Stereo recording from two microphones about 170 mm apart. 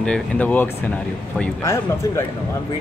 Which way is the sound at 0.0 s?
5° left (ahead or behind).